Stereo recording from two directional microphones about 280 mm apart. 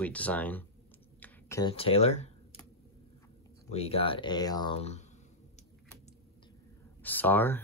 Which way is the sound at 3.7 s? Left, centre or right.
Left.